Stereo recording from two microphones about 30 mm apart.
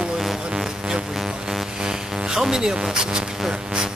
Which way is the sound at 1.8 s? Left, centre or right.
Centre.